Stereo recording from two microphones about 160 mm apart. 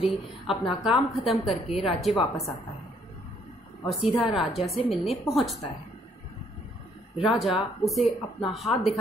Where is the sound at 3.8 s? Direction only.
Centre (ahead or behind).